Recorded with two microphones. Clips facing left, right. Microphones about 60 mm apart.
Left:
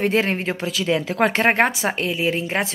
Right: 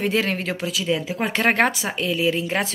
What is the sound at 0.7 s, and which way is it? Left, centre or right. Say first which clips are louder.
Speech: left 2 dB; left.